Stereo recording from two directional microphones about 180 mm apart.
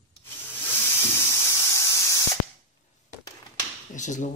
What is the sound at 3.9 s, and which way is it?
Speech, 45° left (ahead or behind).